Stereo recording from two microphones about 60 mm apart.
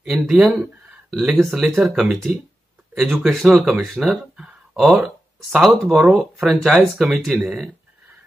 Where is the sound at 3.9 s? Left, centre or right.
Centre.